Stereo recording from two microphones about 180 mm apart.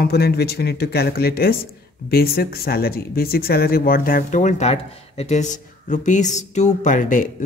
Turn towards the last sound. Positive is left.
turn(degrees=50)  # may be behind; listen again after turning